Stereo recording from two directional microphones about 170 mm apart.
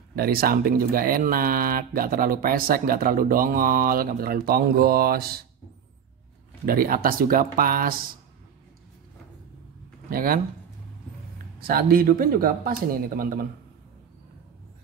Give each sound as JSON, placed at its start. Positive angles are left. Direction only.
{"t": 0.1, "sound": "speech", "side_deg": -65}
{"t": 6.6, "sound": "speech", "side_deg": -60}
{"t": 10.0, "sound": "speech", "side_deg": -60}
{"t": 11.6, "sound": "speech", "side_deg": -60}